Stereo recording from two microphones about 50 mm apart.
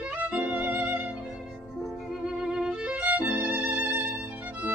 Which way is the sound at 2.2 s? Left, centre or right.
Centre.